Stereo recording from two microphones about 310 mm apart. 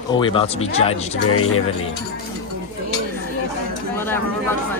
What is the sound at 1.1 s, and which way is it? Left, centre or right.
Speech, left.